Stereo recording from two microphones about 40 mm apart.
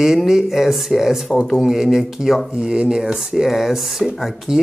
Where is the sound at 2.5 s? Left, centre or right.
Right.